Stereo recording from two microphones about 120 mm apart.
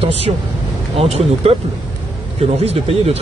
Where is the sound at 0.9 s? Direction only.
55° right (ahead or behind).